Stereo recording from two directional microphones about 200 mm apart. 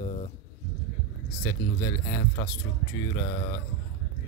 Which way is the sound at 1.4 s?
15° left (ahead or behind).